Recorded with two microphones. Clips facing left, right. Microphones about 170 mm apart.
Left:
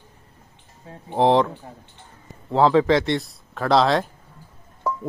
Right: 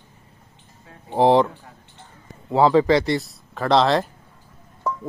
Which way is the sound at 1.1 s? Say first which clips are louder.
Right 2 dB; centre (ahead or behind).